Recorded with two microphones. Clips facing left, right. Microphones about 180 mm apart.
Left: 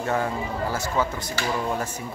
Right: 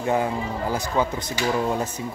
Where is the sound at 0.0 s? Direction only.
15° right (ahead or behind).